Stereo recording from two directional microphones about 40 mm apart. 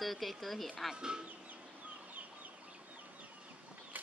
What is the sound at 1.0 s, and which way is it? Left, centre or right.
Speech, right.